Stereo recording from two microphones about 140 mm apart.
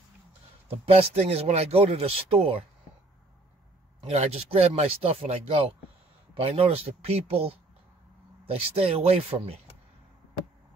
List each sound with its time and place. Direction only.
0.7 s speech: 45° right (ahead or behind)
4.1 s speech: 45° right (ahead or behind)